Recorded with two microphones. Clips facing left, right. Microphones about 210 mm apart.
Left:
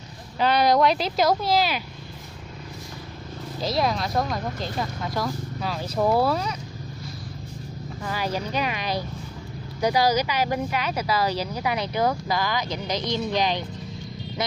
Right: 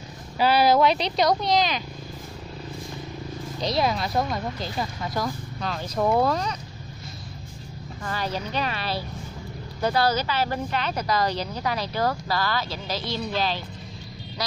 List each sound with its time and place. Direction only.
0.4 s speech: 5° right (ahead or behind)
3.6 s speech: centre (ahead or behind)
8.0 s speech: 10° left (ahead or behind)